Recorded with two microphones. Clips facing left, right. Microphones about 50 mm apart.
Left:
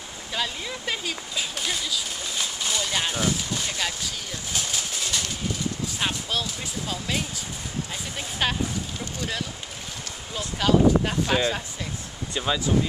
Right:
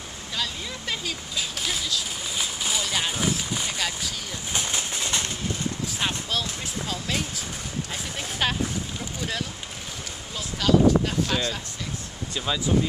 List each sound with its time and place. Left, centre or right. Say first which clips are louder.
0.3 s speech: left 2 dB; centre
2.3 s speech: even; centre
4.5 s bird: right 2 dB; right
5.9 s speech: even; centre
8.4 s speech: even; centre
10.3 s speech: even; centre